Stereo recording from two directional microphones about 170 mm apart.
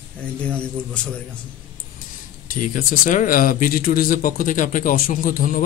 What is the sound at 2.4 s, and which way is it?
Speech, 50° left (ahead or behind).